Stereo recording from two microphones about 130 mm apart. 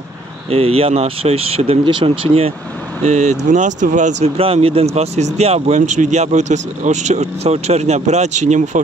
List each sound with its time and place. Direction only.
0.5 s speech: 50° right (ahead or behind)
1.9 s speech: 35° right (ahead or behind)
3.0 s speech: 60° right (ahead or behind)
4.4 s speech: 45° right (ahead or behind)
5.8 s speech: 70° right (ahead or behind)